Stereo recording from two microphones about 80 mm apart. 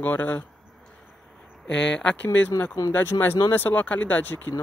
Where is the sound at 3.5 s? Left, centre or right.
Left.